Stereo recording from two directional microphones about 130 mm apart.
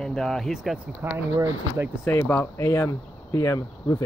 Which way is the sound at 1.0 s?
20° right (ahead or behind).